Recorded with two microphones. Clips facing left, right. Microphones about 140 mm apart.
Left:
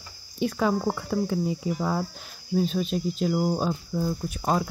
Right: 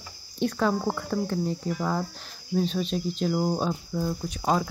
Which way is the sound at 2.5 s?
5° left (ahead or behind).